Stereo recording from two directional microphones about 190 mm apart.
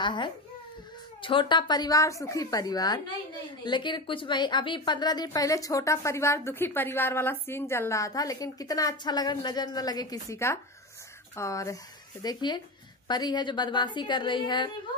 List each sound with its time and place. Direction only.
0.0 s a child's voice: 25° left (ahead or behind)